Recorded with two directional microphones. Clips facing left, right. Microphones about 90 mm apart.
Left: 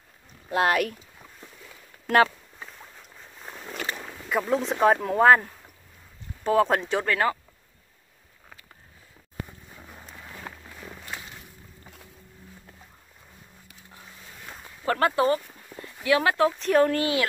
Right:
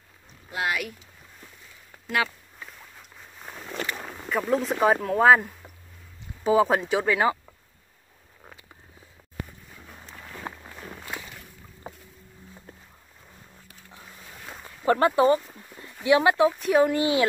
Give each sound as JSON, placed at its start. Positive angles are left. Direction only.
{"t": 0.5, "sound": "speech", "side_deg": 45}
{"t": 4.3, "sound": "speech", "side_deg": 0}
{"t": 14.8, "sound": "speech", "side_deg": -20}
{"t": 17.0, "sound": "speech", "side_deg": -25}